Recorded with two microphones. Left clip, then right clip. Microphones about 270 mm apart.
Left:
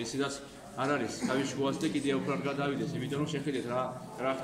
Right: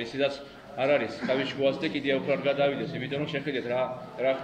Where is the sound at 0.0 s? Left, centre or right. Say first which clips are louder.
Right 6 dB; left.